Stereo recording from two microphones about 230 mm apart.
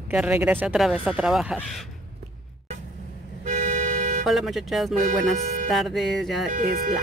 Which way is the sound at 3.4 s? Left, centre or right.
Right.